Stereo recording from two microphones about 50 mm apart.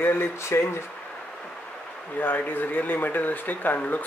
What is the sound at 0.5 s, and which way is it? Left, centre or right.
Speech, left.